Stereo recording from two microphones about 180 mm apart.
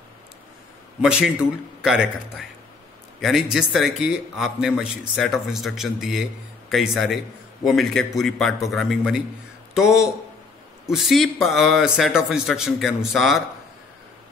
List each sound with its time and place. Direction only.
1.0 s a man's voice: 5° right (ahead or behind)